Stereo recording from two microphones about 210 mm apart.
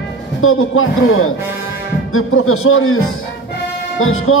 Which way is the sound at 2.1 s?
85° left.